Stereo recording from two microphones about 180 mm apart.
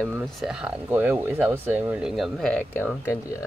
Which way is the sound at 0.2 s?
Centre (ahead or behind).